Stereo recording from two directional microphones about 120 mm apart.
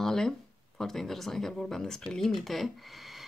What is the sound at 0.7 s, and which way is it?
Speech, 5° left (ahead or behind).